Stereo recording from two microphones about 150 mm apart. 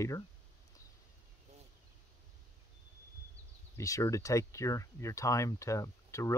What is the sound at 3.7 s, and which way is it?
Speech, 20° left (ahead or behind).